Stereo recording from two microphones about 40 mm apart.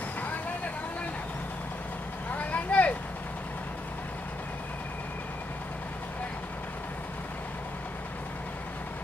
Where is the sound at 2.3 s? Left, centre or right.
Left.